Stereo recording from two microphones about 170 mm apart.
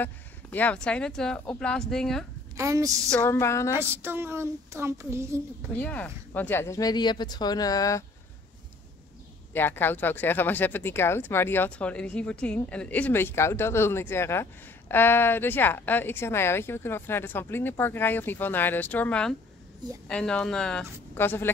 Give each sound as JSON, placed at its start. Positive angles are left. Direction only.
{"t": 0.0, "sound": "speech", "side_deg": 10}
{"t": 2.5, "sound": "a woman's voice", "side_deg": -20}
{"t": 3.1, "sound": "speech", "side_deg": 15}
{"t": 3.7, "sound": "a child's voice", "side_deg": -15}
{"t": 5.8, "sound": "speech", "side_deg": 10}
{"t": 9.5, "sound": "speech", "side_deg": 10}